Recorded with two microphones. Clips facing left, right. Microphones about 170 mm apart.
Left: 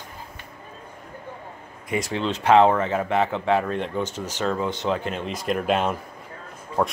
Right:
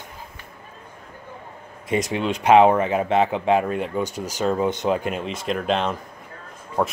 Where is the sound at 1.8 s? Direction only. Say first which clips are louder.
Right 3 dB; 20° right (ahead or behind); by 5.9 s 5° left (ahead or behind).